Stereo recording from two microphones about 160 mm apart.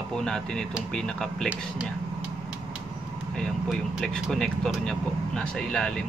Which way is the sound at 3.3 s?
Centre (ahead or behind).